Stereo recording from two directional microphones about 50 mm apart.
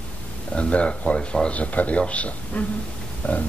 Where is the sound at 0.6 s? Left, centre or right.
Left.